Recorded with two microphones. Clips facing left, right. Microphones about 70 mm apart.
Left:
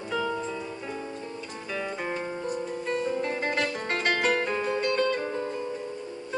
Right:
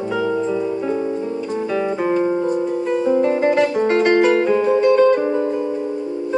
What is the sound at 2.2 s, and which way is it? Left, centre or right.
Music, right.